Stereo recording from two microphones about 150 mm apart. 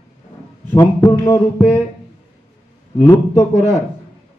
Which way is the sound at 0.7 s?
15° left (ahead or behind).